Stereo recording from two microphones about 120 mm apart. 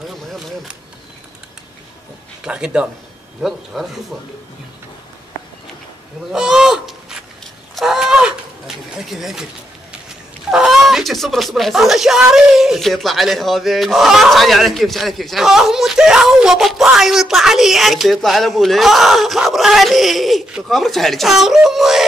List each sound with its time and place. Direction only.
2.4 s speech: 5° right (ahead or behind)
6.3 s honk: 5° right (ahead or behind)
7.7 s a sound: 5° right (ahead or behind)
10.5 s speech: centre (ahead or behind)